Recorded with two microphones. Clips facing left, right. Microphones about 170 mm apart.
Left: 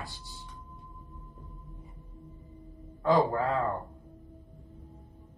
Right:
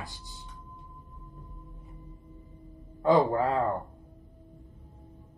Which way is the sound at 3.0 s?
25° right (ahead or behind).